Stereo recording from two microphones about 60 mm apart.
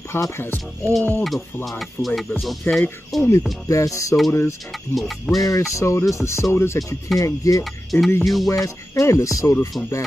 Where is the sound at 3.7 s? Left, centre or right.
Left.